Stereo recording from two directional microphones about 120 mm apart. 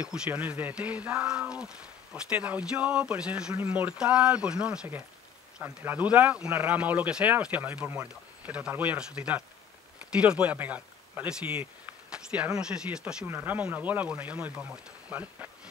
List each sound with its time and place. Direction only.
0.0 s speech: 10° right (ahead or behind)